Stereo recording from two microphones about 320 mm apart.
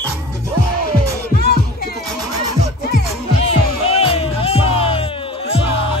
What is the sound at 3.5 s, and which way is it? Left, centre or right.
Music, centre.